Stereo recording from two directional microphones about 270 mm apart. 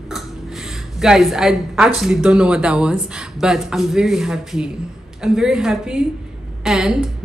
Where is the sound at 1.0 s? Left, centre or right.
Centre.